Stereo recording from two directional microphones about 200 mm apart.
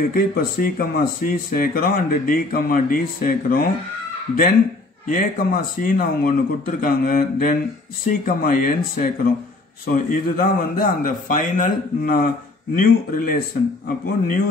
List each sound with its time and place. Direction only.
0.1 s speech: 45° left (ahead or behind)
5.0 s speech: 40° left (ahead or behind)